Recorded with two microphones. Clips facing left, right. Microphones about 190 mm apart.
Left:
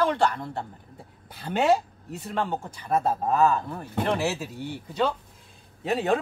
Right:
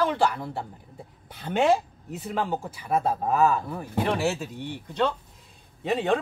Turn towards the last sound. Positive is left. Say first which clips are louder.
# even
turn(degrees=5)  # may be behind; listen again after turning